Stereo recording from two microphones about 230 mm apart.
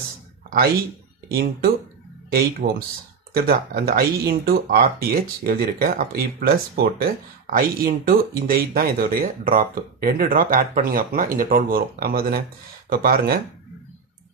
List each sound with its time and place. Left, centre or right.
1.3 s speech: right